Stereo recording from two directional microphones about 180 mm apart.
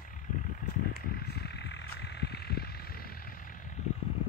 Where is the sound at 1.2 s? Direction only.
65° left (ahead or behind).